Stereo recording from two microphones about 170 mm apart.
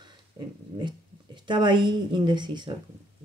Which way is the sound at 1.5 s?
30° right (ahead or behind).